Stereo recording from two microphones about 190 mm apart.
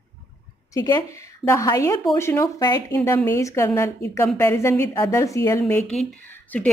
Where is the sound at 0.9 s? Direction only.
15° left (ahead or behind).